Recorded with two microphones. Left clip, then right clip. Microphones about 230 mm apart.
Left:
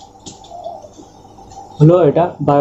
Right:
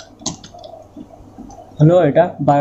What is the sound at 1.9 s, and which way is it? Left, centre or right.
Speech, right.